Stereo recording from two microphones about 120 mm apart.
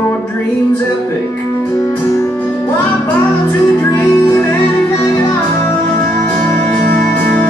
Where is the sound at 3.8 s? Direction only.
20° left (ahead or behind).